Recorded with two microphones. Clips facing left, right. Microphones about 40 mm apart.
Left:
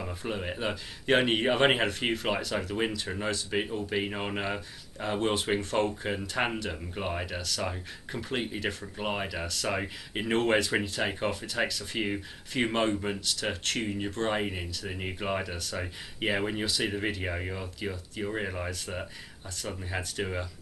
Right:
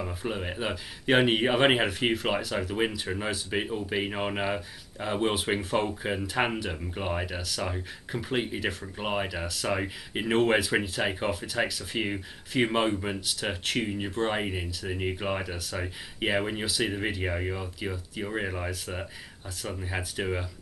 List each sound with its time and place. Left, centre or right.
0.0 s speech: centre